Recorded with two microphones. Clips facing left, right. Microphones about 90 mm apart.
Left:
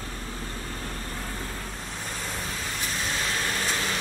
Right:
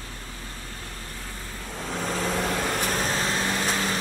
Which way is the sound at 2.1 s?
90° right.